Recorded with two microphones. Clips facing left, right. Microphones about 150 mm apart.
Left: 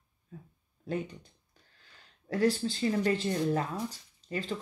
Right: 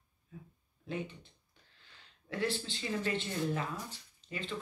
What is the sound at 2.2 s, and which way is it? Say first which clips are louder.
Speech: left 8 dB; 40° left (ahead or behind).